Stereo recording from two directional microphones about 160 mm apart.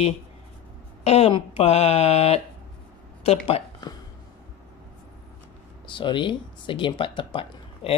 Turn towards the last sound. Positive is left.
turn(degrees=30)  # may be behind; listen again after turning